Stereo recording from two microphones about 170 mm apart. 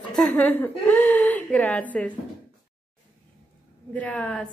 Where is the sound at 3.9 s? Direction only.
10° left (ahead or behind).